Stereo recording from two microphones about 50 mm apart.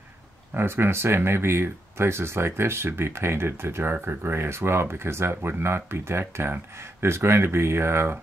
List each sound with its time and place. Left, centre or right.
0.6 s speech: right